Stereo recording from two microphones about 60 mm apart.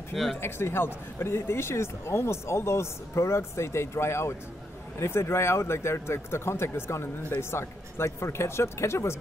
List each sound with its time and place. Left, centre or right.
0.1 s speech: centre
0.4 s speech: left